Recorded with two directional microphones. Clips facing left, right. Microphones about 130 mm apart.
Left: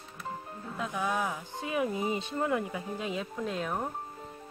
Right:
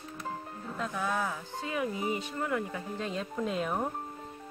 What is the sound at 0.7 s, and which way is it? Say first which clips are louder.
Music: left 1 dB; 15° left (ahead or behind).